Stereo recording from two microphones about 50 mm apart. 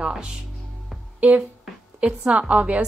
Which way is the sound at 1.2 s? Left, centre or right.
Right.